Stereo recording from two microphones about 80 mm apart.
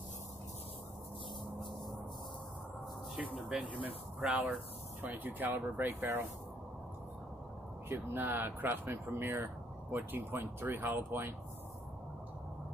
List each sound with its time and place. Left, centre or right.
3.3 s speech: centre
5.0 s speech: right
7.9 s speech: right